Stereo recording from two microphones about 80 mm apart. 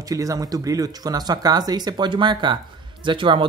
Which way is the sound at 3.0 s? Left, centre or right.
Right.